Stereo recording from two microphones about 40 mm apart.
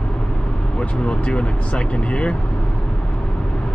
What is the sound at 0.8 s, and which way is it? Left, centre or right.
Speech, left.